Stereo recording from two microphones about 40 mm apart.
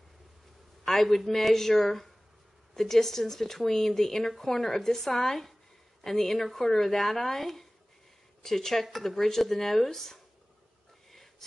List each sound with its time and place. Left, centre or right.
0.8 s speech: centre
11.1 s whispering: centre